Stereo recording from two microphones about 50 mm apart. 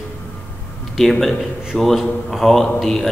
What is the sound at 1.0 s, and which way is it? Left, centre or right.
A man's voice, centre.